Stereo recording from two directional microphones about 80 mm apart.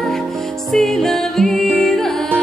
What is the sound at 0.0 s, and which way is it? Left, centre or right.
Music, centre.